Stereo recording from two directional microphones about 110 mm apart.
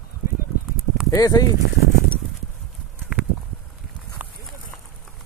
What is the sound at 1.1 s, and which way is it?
Speech, 35° left (ahead or behind).